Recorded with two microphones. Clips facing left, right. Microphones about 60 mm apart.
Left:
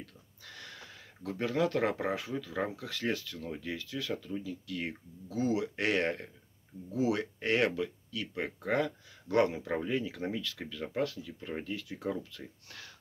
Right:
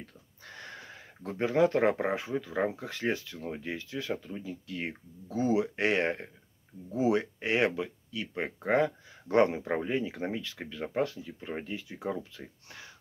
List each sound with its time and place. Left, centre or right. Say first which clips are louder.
0.0 s speech: right 1 dB; right